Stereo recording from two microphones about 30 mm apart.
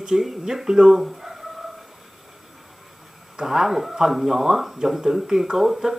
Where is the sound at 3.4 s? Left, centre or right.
Centre.